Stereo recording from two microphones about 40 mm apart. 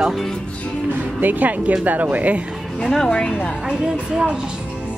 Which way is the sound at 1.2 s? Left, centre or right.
Right.